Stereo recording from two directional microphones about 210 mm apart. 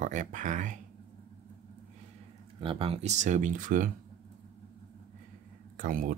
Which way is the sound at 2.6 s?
25° right (ahead or behind).